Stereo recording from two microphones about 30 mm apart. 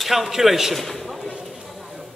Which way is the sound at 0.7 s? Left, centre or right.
Centre.